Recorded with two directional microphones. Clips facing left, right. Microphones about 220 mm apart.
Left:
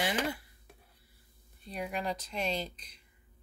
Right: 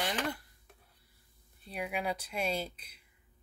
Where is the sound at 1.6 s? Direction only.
5° right (ahead or behind).